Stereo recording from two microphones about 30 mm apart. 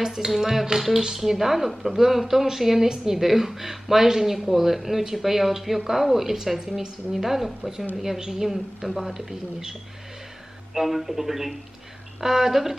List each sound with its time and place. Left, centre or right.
0.0 s a woman's voice: centre
6.8 s a woman's voice: right
7.2 s speech: centre
10.7 s speech: centre